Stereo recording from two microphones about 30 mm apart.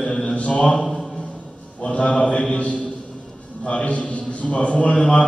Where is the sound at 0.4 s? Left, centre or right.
Left.